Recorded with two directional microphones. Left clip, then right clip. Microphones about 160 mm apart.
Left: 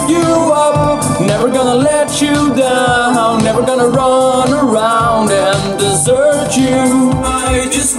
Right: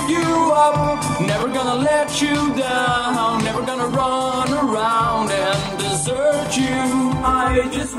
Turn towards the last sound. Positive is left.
turn(degrees=20)  # may be behind; listen again after turning